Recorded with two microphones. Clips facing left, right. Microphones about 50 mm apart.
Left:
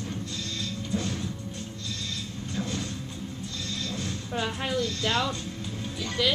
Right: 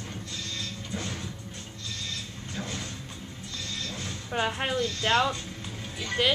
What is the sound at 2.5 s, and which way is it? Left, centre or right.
Music, centre.